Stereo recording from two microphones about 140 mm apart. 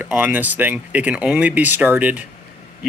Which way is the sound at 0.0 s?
15° right (ahead or behind).